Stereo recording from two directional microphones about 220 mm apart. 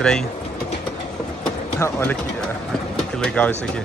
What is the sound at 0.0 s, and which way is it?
Speech, 5° left (ahead or behind).